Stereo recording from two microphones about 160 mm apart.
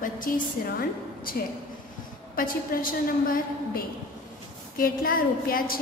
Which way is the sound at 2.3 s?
60° left (ahead or behind).